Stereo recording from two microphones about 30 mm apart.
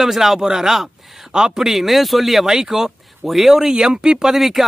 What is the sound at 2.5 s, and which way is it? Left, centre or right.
Speech, centre.